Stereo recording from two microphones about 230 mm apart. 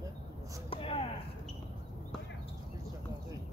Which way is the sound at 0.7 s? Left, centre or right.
Left.